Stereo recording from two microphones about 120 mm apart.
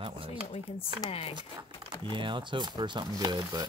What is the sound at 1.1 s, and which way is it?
Speech, 55° left (ahead or behind).